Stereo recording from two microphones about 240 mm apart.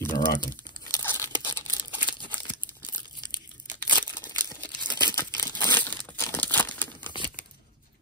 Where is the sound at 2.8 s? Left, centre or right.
Centre.